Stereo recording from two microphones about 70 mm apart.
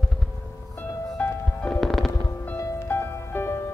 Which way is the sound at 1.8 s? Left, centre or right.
Centre.